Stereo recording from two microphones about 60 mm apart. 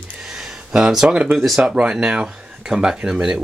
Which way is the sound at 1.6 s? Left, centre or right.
Centre.